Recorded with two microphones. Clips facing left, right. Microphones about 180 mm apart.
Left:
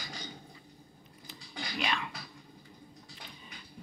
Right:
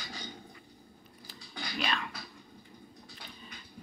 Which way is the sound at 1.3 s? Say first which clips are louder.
Even; 15° left (ahead or behind).